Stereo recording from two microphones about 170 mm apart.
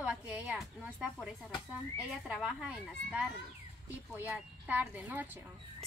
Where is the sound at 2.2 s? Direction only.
5° right (ahead or behind).